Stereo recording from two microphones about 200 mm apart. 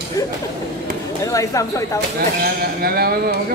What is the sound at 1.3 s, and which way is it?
Speech, 15° left (ahead or behind).